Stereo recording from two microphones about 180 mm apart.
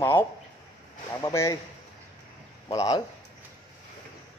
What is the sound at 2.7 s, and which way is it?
Speech, 20° left (ahead or behind).